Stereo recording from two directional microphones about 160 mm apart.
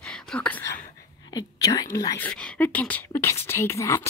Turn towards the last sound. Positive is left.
turn(degrees=15)  # may be behind; listen again after turning